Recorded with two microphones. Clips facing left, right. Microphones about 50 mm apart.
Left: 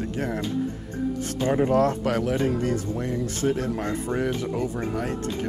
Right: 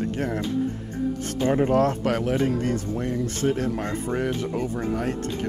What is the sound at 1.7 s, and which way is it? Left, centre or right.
Speech, right.